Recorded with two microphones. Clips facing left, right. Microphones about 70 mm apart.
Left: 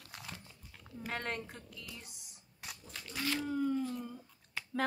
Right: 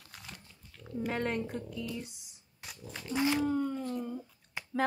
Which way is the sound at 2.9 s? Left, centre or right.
Right.